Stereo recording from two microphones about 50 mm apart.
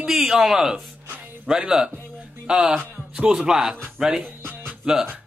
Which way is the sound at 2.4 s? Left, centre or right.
Centre.